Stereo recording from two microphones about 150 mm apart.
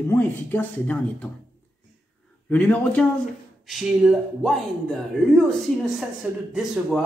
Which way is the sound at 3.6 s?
5° right (ahead or behind).